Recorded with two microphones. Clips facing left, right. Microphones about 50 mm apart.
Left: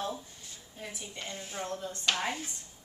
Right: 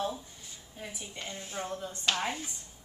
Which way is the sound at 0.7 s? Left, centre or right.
Centre.